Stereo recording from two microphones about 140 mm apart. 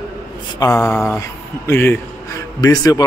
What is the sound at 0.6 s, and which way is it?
Speech, 20° left (ahead or behind).